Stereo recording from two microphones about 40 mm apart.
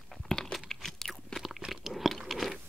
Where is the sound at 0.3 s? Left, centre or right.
Centre.